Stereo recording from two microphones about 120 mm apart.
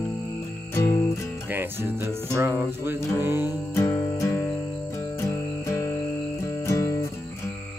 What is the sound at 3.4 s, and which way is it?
Music, 30° left (ahead or behind).